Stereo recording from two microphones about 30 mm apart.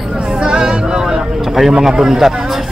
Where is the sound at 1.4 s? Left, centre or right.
Centre.